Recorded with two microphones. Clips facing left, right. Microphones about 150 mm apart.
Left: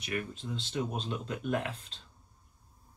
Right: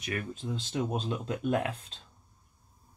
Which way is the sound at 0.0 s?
45° right (ahead or behind).